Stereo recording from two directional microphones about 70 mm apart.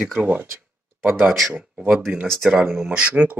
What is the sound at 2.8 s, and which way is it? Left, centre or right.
Speech, centre.